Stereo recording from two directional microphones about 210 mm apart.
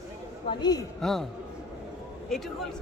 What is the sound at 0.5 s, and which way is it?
Speech, 20° left (ahead or behind).